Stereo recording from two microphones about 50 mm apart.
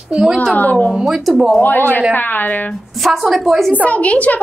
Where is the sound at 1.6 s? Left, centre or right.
Left.